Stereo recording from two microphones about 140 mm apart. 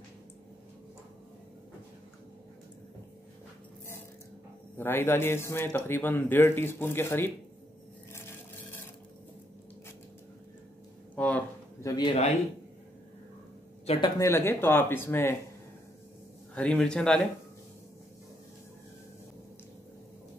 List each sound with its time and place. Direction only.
4.7 s a man's voice: 15° left (ahead or behind)
11.1 s a sound: 10° left (ahead or behind)
11.8 s a sound: 25° left (ahead or behind)
12.1 s a man's voice: 50° left (ahead or behind)
13.9 s a man's voice: 45° left (ahead or behind)
14.2 s a man's voice: 15° left (ahead or behind)
16.5 s a man's voice: 10° left (ahead or behind)